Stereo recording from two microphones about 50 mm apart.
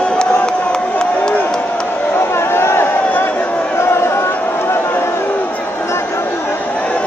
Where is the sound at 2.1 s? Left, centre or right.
Left.